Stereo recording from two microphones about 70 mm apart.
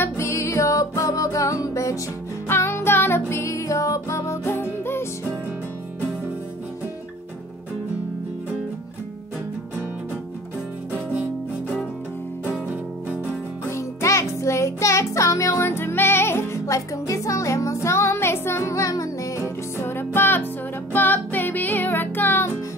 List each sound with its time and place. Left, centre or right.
0.0 s music: left
2.4 s music: left
13.7 s music: left
16.6 s music: left